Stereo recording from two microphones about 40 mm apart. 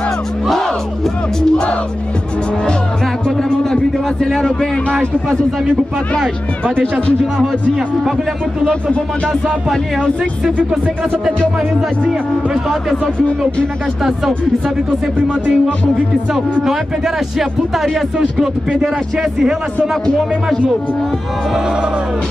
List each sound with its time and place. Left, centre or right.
0.5 s music: centre
3.3 s a sound: centre
4.3 s a man's voice: centre
15.1 s music: right
16.6 s speech: centre